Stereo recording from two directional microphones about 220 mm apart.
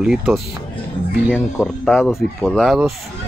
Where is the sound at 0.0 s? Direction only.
5° right (ahead or behind).